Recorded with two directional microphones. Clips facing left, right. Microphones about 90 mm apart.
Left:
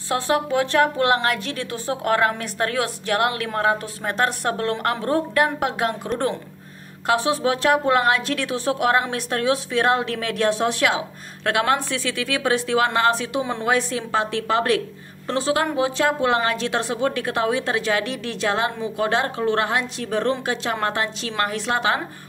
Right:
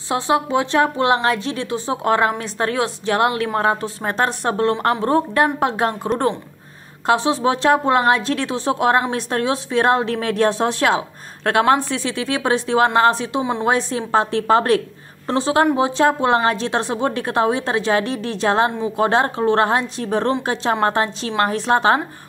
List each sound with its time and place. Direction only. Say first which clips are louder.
0.1 s a woman's voice: right 3 dB; 20° right (ahead or behind); by 22.0 s 35° right (ahead or behind)